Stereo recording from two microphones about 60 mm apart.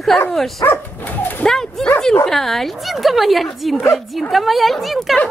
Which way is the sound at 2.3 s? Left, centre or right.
Centre.